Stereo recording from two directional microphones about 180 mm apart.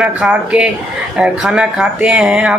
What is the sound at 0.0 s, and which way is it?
Speech, 5° right (ahead or behind).